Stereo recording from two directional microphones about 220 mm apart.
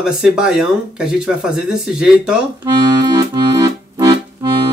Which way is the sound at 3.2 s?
15° right (ahead or behind).